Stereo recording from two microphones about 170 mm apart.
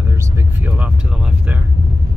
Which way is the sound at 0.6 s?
10° right (ahead or behind).